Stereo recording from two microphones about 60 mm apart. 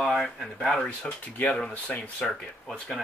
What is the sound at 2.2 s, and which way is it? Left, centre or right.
Speech, centre.